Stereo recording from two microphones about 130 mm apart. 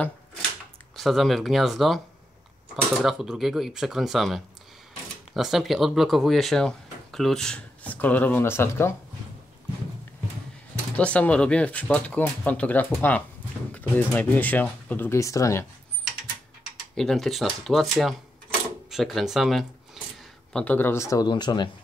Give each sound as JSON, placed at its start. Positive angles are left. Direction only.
{"t": 0.9, "sound": "speech", "side_deg": 0}
{"t": 11.0, "sound": "speech", "side_deg": 10}
{"t": 16.9, "sound": "speech", "side_deg": 5}
{"t": 20.5, "sound": "speech", "side_deg": 15}